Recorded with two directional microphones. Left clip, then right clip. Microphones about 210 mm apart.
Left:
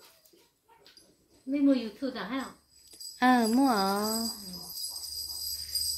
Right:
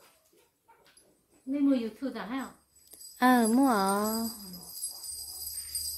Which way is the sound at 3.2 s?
15° right (ahead or behind).